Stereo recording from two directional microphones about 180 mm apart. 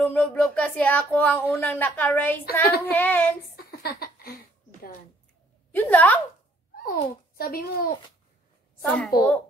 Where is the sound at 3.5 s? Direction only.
55° left (ahead or behind).